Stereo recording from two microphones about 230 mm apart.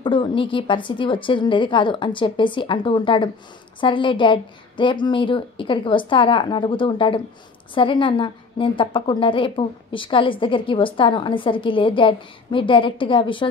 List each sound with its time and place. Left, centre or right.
0.0 s a woman's voice: left